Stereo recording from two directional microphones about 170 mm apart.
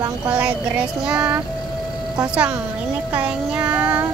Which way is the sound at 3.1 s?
5° right (ahead or behind).